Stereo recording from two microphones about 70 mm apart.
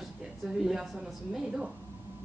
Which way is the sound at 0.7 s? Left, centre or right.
Centre.